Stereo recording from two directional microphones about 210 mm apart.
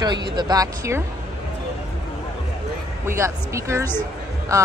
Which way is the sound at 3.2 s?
15° right (ahead or behind).